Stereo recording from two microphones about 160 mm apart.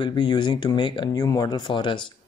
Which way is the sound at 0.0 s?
30° left (ahead or behind).